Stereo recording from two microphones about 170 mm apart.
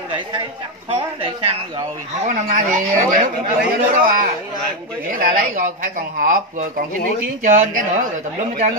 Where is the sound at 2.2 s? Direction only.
50° right (ahead or behind).